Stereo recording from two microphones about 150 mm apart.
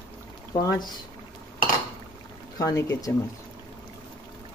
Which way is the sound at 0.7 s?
30° left (ahead or behind).